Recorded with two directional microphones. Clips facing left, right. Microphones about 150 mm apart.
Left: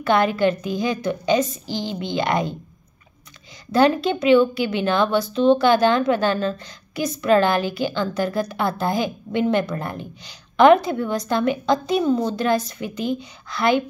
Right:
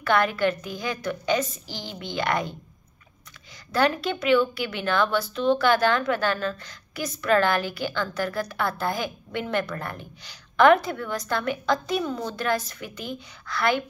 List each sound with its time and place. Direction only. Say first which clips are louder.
0.0 s a woman's voice: left 4 dB; 20° left (ahead or behind)
3.7 s a woman's voice: left 6 dB; 20° left (ahead or behind)